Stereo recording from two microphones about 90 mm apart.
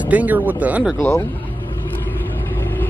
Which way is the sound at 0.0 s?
15° right (ahead or behind).